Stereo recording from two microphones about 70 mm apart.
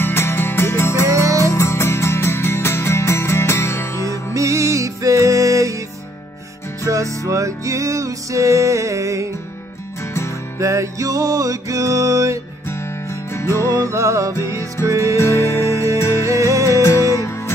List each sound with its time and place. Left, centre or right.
0.0 s music: left
4.0 s music: right
6.9 s music: right
10.6 s music: right
13.7 s music: right
15.1 s music: left
15.6 s music: right
16.0 s music: left
16.3 s music: right